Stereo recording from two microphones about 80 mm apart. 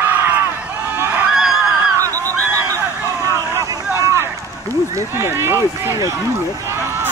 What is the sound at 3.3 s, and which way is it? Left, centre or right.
Run, right.